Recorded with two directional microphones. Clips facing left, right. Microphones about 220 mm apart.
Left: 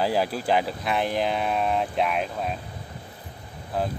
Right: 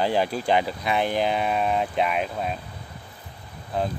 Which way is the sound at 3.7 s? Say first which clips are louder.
Right 1 dB; 5° left (ahead or behind).